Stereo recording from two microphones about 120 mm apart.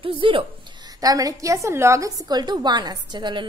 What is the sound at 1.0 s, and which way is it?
A woman's voice, 30° right (ahead or behind).